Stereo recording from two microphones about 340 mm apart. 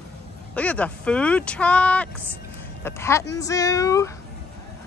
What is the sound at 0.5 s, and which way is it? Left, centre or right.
Speech, centre.